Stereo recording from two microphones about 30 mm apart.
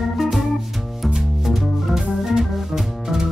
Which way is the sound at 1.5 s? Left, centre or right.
Centre.